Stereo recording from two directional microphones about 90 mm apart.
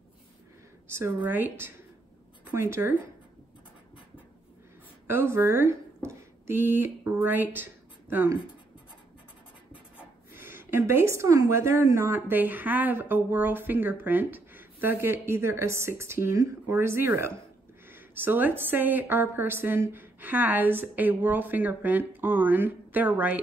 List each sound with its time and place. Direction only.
0.9 s speech: 25° right (ahead or behind)
5.0 s speech: 30° right (ahead or behind)
10.3 s speech: 25° right (ahead or behind)